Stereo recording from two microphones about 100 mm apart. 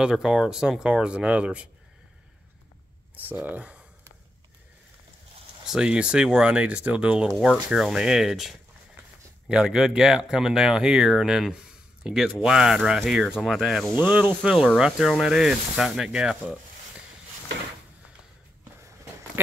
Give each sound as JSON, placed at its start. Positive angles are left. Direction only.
{"t": 0.0, "sound": "speech", "side_deg": -5}
{"t": 3.2, "sound": "speech", "side_deg": -15}
{"t": 5.7, "sound": "speech", "side_deg": -10}
{"t": 7.2, "sound": "speech", "side_deg": 0}
{"t": 13.9, "sound": "speech", "side_deg": -15}
{"t": 14.8, "sound": "speech", "side_deg": -5}